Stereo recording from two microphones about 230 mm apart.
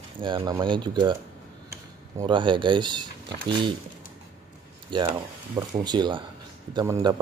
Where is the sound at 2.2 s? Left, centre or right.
Right.